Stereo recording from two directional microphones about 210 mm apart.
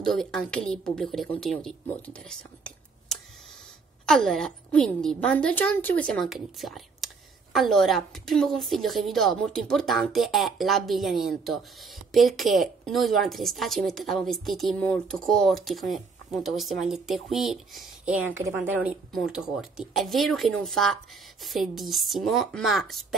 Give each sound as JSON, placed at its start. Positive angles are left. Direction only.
{"t": 0.0, "sound": "speech", "side_deg": 0}